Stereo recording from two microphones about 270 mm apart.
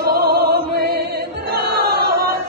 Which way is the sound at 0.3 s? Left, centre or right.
Right.